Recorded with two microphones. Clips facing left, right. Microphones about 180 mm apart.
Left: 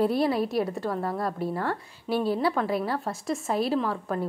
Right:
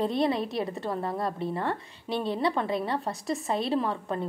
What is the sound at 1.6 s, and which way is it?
A woman's voice, 5° left (ahead or behind).